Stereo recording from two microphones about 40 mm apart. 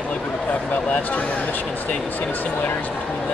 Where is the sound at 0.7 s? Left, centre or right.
Left.